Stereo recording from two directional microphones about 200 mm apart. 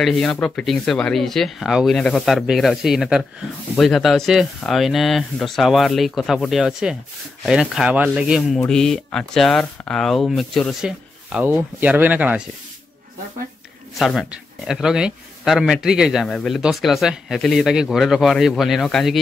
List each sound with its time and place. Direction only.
0.0 s speech: centre (ahead or behind)
13.9 s speech: centre (ahead or behind)